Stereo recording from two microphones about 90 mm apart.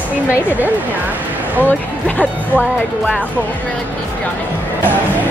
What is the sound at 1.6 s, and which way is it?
Speech, 20° left (ahead or behind).